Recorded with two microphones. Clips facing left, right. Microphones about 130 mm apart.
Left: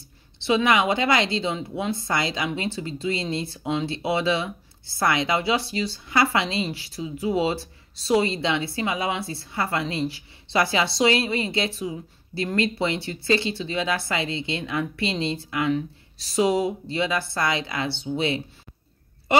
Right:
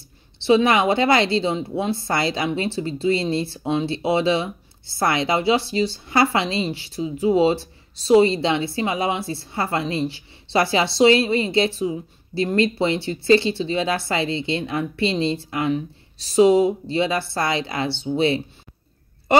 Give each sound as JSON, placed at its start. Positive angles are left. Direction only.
{"t": 0.4, "sound": "speech", "side_deg": -30}